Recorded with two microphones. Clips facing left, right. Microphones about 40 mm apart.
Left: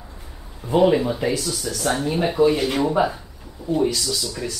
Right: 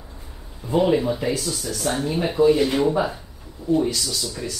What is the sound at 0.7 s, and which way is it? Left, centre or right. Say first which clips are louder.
Speech: left 2 dB; centre.